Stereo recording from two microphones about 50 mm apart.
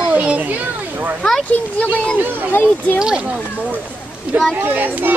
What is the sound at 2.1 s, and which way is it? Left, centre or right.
Speech, right.